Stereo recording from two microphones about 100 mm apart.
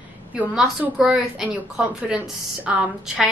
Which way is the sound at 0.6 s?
5° right (ahead or behind).